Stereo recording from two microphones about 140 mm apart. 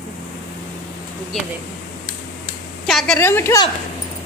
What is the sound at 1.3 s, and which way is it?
Speech, 5° left (ahead or behind).